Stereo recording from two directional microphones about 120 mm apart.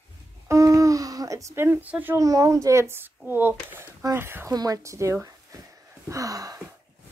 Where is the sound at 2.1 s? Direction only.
25° right (ahead or behind).